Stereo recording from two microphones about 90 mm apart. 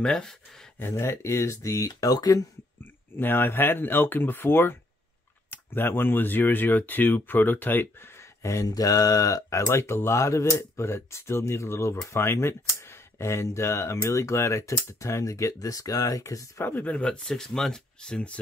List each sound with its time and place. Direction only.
0.0 s speech: 5° left (ahead or behind)
0.8 s speech: 30° left (ahead or behind)
2.8 s speech: 25° left (ahead or behind)
8.4 s speech: 35° left (ahead or behind)
8.6 s speech: 45° left (ahead or behind)
16.6 s speech: 15° left (ahead or behind)